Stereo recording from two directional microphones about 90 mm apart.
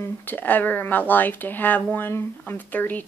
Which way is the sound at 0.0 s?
20° left (ahead or behind).